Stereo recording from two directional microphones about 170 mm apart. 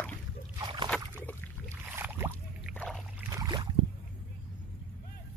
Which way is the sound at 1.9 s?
10° right (ahead or behind).